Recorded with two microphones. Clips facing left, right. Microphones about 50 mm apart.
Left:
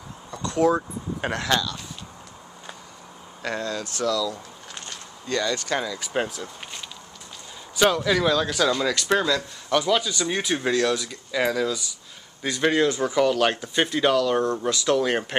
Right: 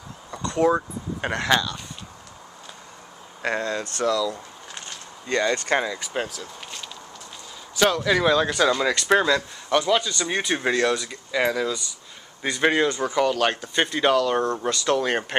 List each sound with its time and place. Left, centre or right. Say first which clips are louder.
0.6 s speech: even; centre
3.4 s speech: right 3 dB; right
5.9 s speech: left 2 dB; centre
7.8 s speech: even; centre
8.1 s speech: right 2 dB; centre
9.8 s speech: right 1 dB; centre
10.2 s speech: right 1 dB; centre
12.4 s speech: right 1 dB; centre
13.0 s speech: left 1 dB; centre
13.9 s speech: right 1 dB; centre